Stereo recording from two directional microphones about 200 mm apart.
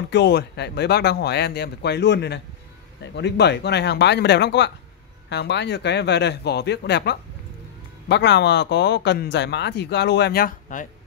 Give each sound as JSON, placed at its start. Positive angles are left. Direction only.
{"t": 0.1, "sound": "speech", "side_deg": 60}